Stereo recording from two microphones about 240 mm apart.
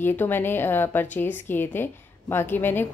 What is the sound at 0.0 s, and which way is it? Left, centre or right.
A woman's voice, centre.